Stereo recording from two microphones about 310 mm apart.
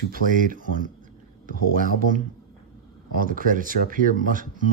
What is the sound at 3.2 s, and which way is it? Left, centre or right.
Speech, right.